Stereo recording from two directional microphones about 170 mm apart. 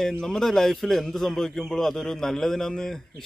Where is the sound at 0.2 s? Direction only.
5° left (ahead or behind).